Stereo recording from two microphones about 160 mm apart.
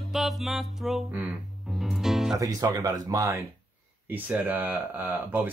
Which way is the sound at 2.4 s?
20° right (ahead or behind).